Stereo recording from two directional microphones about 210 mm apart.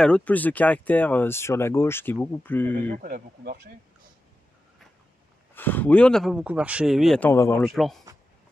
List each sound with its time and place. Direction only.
0.0 s speech: 5° left (ahead or behind)
2.9 s speech: 40° right (ahead or behind)
5.5 s speech: 10° left (ahead or behind)
7.6 s speech: centre (ahead or behind)